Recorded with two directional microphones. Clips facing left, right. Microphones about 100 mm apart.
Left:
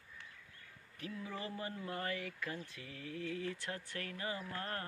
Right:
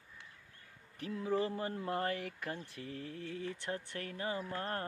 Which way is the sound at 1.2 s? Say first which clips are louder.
Right 12 dB; 35° right (ahead or behind).